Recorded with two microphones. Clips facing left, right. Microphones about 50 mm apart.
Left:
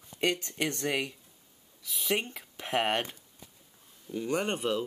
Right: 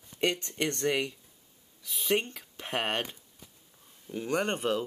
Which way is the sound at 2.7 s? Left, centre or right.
Centre.